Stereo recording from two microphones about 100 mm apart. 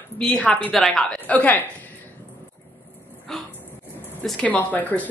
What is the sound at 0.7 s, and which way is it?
Speech, centre (ahead or behind).